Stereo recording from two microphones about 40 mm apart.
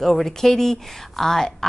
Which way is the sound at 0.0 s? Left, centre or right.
Centre.